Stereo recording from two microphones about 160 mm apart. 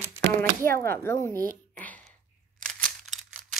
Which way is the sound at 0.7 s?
15° left (ahead or behind).